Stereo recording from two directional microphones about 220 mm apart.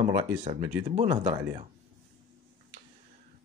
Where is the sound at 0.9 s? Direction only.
30° right (ahead or behind).